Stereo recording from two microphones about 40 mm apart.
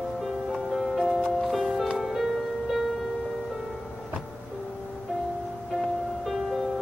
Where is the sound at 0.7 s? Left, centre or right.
Centre.